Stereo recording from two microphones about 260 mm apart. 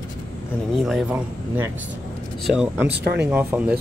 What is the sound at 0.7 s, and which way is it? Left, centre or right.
Speech, centre.